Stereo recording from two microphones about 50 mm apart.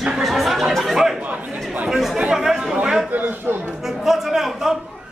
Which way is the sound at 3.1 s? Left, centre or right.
Right.